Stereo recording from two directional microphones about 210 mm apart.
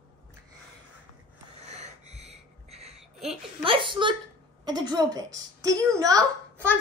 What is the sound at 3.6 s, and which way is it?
A woman's voice, 25° right (ahead or behind).